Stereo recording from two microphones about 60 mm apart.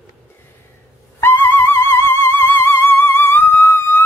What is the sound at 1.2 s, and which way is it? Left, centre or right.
Music, left.